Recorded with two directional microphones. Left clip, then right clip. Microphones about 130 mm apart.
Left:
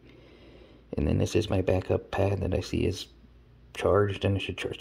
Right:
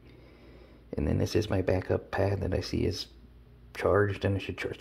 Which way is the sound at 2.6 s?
45° left (ahead or behind).